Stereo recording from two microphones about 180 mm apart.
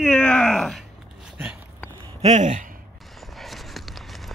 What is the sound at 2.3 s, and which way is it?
Speech, 45° right (ahead or behind).